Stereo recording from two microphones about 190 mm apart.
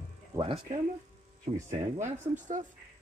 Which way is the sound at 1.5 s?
30° right (ahead or behind).